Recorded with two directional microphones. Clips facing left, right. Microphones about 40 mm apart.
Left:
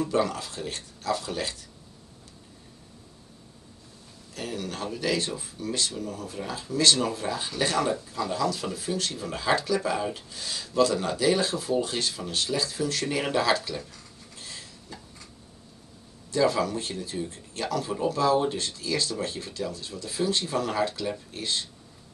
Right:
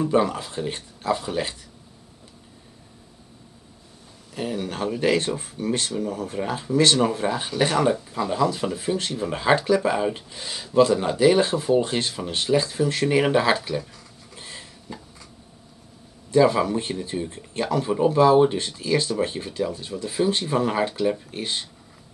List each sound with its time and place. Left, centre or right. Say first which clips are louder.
0.0 s speech: right 5 dB; right
4.3 s speech: right 5 dB; right
14.3 s a sound: right 3 dB; right
16.3 s speech: right 6 dB; right